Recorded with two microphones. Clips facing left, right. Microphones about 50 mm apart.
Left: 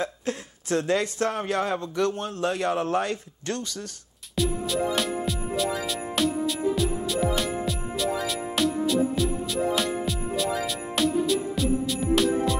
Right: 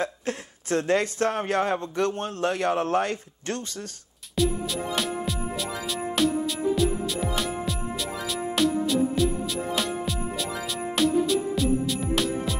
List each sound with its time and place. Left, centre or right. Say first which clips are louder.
0.0 s speech: even; right
4.4 s music: even; centre